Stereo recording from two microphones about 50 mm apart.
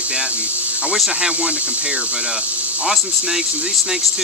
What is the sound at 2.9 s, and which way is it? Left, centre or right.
Speech, centre.